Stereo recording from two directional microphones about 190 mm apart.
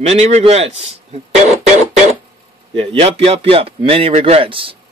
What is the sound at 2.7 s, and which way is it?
A man's voice, 30° right (ahead or behind).